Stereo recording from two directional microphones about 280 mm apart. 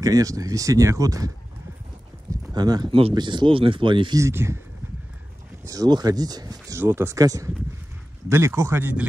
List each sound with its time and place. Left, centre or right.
0.0 s speech: centre
2.5 s speech: centre
5.7 s speech: centre